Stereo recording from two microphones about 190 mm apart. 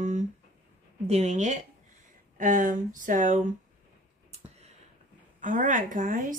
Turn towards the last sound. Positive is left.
turn(degrees=-45)  # may be behind; listen again after turning